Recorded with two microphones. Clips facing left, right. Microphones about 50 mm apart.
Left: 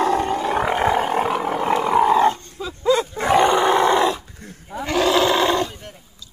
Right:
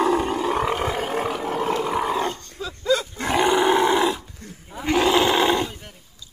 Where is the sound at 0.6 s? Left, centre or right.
Centre.